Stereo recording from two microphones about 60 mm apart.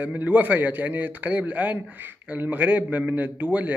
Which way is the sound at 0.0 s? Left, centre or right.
Right.